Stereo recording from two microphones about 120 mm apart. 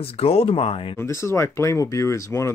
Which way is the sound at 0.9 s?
25° left (ahead or behind).